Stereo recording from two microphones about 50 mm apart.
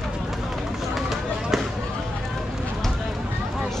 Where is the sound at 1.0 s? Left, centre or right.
Centre.